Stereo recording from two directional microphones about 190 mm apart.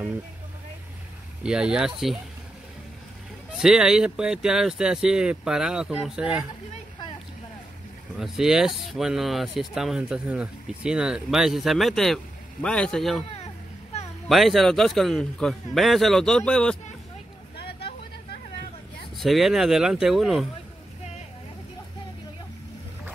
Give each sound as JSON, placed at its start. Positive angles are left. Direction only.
{"t": 1.4, "sound": "speech", "side_deg": -5}
{"t": 3.5, "sound": "speech", "side_deg": -5}
{"t": 8.2, "sound": "speech", "side_deg": 0}
{"t": 14.3, "sound": "speech", "side_deg": 0}
{"t": 17.6, "sound": "vehicle", "side_deg": 60}
{"t": 19.1, "sound": "speech", "side_deg": 0}